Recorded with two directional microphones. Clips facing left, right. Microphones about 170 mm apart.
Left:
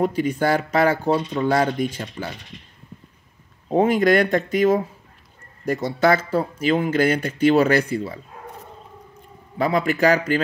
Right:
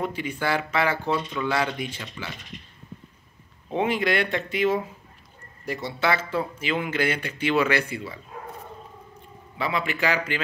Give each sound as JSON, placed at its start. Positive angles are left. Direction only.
{"t": 0.0, "sound": "speech", "side_deg": 40}
{"t": 3.7, "sound": "speech", "side_deg": 45}
{"t": 9.6, "sound": "speech", "side_deg": 45}